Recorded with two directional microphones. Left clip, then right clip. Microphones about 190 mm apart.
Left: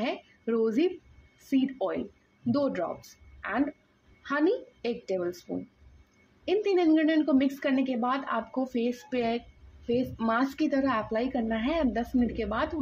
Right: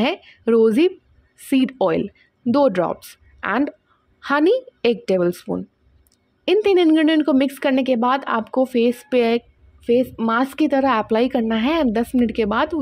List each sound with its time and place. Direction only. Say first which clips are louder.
0.0 s speech: right 11 dB; 45° right (ahead or behind)
6.4 s speech: right 10 dB; 50° right (ahead or behind)